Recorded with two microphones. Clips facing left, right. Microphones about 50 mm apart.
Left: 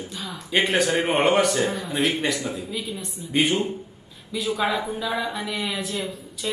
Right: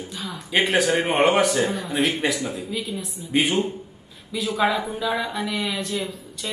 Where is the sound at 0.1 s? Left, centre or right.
Centre.